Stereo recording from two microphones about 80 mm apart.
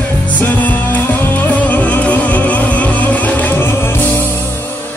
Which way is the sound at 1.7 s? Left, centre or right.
Centre.